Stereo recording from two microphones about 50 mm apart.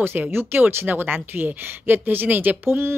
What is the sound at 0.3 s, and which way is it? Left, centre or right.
Speech, right.